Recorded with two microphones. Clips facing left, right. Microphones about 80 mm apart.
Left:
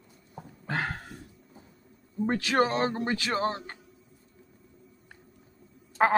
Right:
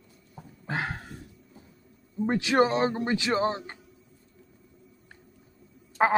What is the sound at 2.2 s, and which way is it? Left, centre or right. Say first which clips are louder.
A man's voice: right 2 dB; centre.